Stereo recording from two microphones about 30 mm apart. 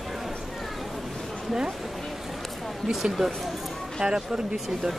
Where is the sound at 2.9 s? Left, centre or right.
Centre.